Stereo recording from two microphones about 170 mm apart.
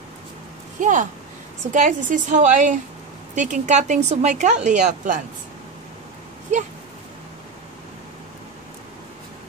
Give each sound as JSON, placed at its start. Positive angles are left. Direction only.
{"t": 0.7, "sound": "speech", "side_deg": -45}